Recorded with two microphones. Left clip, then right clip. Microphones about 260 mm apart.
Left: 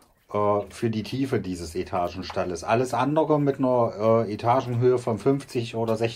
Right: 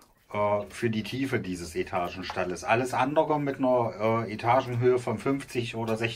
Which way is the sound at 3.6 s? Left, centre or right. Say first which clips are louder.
Left 3 dB; right.